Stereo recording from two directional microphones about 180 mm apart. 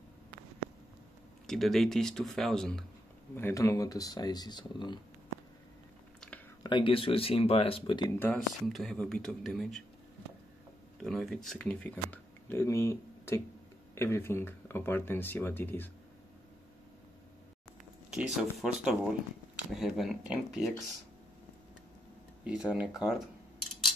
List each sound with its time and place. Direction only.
1.5 s speech: centre (ahead or behind)
3.3 s speech: 15° left (ahead or behind)
6.6 s speech: 25° left (ahead or behind)
8.2 s speech: 5° left (ahead or behind)
11.0 s speech: centre (ahead or behind)
18.1 s speech: centre (ahead or behind)
22.7 s speech: 5° right (ahead or behind)